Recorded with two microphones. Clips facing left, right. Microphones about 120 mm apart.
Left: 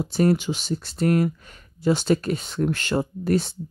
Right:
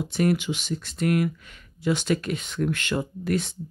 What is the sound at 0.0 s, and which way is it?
Speech, 35° left (ahead or behind).